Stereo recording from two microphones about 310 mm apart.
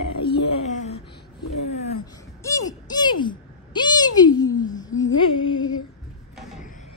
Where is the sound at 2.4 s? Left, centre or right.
Centre.